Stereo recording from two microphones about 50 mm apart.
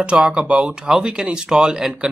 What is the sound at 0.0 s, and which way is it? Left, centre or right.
Speech, right.